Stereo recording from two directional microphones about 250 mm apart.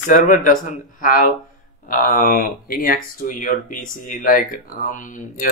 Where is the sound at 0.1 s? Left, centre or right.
Left.